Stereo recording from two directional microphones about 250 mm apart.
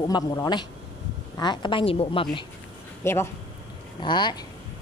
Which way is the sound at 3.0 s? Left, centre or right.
Centre.